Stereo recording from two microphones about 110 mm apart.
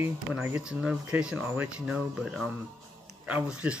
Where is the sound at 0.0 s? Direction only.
15° right (ahead or behind).